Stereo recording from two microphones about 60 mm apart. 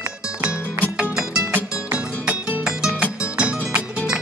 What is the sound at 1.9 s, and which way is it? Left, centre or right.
Music, right.